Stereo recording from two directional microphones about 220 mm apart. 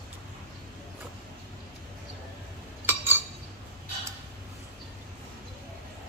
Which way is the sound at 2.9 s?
10° right (ahead or behind).